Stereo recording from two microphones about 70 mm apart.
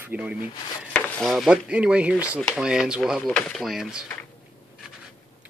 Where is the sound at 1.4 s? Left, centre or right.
Centre.